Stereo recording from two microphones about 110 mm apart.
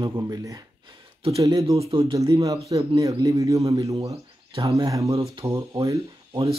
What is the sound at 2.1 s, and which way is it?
Speech, 30° right (ahead or behind).